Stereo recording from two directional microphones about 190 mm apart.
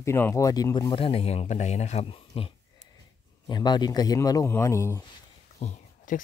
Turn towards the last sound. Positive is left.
turn(degrees=40)  # may be behind; listen again after turning